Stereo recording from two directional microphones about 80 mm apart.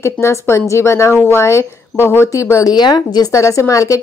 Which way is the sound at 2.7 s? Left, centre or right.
Left.